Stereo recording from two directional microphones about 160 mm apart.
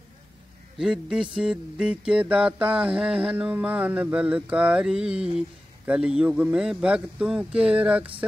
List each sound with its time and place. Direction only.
0.7 s mantra: centre (ahead or behind)